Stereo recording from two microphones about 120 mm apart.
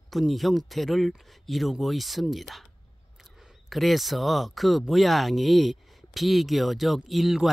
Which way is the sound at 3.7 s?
Centre (ahead or behind).